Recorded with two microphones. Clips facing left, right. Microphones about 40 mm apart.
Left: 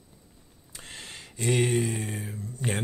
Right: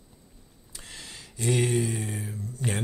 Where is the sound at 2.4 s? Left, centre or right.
Left.